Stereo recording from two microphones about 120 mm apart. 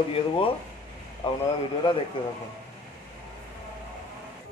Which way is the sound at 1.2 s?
45° left (ahead or behind).